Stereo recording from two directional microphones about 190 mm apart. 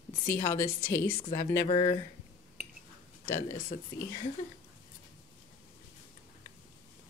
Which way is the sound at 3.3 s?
15° left (ahead or behind).